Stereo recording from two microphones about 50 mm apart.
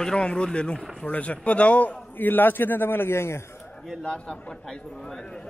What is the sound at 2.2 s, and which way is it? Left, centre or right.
A man's voice, left.